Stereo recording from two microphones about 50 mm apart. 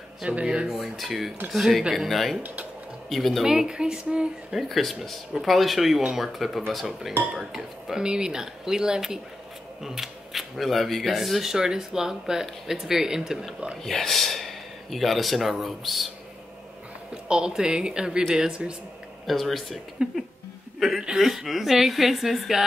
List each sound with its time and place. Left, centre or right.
0.2 s speech: right
0.7 s speech: centre
3.4 s speech: centre
4.5 s speech: centre
13.8 s speech: centre
17.1 s speech: centre
19.2 s speech: centre
20.0 s speech: centre
20.8 s speech: centre